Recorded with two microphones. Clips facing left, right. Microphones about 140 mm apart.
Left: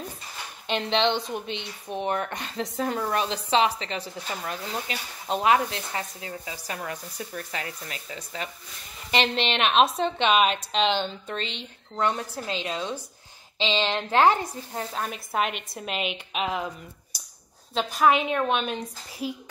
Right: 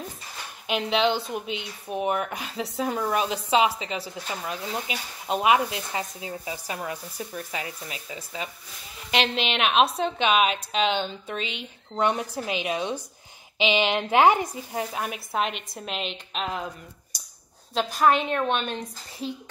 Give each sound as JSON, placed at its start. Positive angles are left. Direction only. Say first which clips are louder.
{"t": 0.7, "sound": "a woman's voice", "louder": "right 1 dB", "side_deg": -5}
{"t": 15.3, "sound": "a woman's voice", "louder": "left 1 dB", "side_deg": 0}
{"t": 17.1, "sound": "a sound", "louder": "even", "side_deg": 5}
{"t": 17.7, "sound": "a woman's voice", "louder": "even", "side_deg": 0}